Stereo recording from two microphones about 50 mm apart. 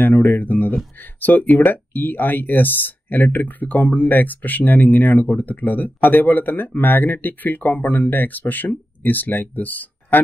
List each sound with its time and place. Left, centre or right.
0.0 s speech: left